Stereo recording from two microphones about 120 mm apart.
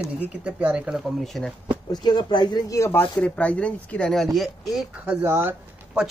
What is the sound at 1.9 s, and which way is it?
Speech, 35° left (ahead or behind).